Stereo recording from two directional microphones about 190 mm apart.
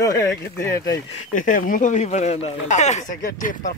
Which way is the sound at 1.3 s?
45° left (ahead or behind).